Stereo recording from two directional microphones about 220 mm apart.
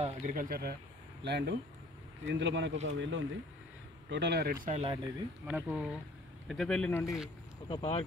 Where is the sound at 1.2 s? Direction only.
50° right (ahead or behind); by 5.0 s 30° right (ahead or behind).